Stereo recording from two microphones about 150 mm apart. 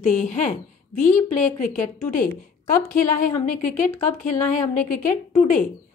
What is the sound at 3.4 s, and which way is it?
Speech, 60° left (ahead or behind).